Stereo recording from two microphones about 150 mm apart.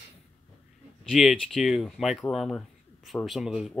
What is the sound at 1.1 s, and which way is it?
Speech, centre (ahead or behind).